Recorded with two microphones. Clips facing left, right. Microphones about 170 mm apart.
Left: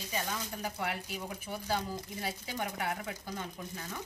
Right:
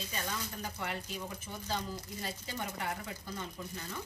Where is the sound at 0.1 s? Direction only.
10° left (ahead or behind).